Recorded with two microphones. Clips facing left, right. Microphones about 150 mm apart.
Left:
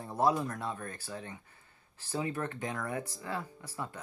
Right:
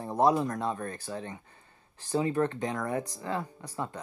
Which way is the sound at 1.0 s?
35° right (ahead or behind).